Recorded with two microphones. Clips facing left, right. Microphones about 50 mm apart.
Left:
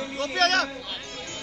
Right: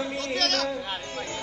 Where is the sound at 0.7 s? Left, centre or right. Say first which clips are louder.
Right 4 dB; right.